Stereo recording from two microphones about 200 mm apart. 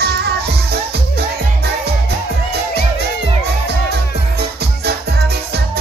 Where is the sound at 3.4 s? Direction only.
55° right (ahead or behind).